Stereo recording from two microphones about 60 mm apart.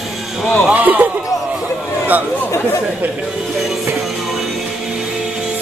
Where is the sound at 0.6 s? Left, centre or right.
Right.